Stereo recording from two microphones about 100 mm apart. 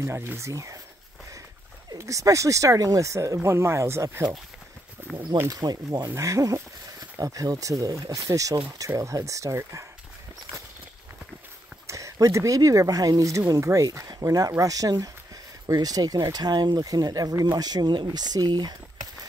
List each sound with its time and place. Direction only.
0.0 s speech: 30° right (ahead or behind)
2.0 s speech: 35° right (ahead or behind)
5.5 s speech: 35° right (ahead or behind)
11.9 s speech: 30° right (ahead or behind)